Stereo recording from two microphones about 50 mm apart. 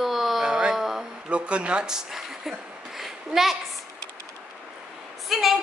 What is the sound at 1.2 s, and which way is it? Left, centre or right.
Speech, right.